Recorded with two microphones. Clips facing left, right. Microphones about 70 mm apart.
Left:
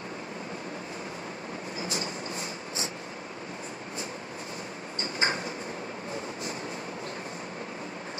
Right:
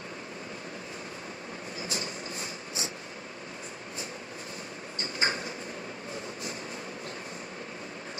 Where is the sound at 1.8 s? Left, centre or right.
Left.